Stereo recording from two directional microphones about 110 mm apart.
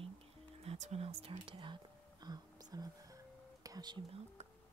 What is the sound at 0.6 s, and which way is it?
Speech, 70° right (ahead or behind).